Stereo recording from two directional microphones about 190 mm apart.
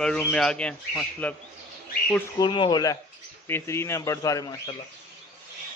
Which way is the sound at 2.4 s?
25° left (ahead or behind).